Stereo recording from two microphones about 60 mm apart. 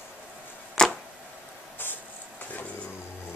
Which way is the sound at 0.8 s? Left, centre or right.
Centre.